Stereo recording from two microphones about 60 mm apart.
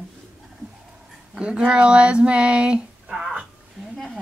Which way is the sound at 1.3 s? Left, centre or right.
Centre.